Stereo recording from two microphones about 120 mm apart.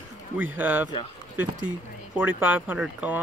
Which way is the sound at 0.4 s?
15° right (ahead or behind).